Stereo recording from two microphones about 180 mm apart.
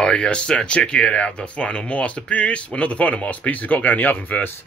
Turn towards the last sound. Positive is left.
turn(degrees=10)  # may be behind; listen again after turning